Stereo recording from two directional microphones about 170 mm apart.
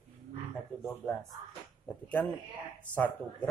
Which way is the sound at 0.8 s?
5° left (ahead or behind).